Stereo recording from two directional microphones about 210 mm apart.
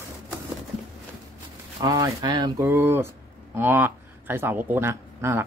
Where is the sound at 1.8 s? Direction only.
20° right (ahead or behind).